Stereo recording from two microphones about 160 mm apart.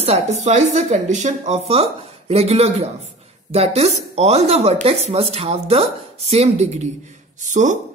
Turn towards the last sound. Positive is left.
turn(degrees=-50)  # may be behind; listen again after turning